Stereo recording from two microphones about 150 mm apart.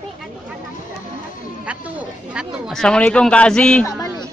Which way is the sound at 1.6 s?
10° right (ahead or behind).